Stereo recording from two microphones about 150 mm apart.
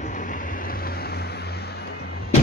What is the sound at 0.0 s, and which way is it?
Vehicle, 60° left (ahead or behind).